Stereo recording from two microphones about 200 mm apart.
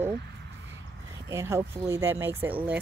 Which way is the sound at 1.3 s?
15° right (ahead or behind).